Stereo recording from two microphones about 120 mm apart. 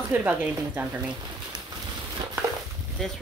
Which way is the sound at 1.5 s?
35° right (ahead or behind).